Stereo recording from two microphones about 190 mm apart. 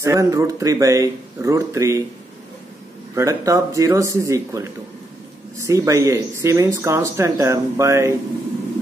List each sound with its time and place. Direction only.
0.0 s speech: 15° right (ahead or behind)
3.2 s speech: 15° right (ahead or behind)